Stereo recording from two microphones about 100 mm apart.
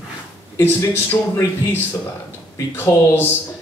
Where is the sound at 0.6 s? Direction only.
20° left (ahead or behind).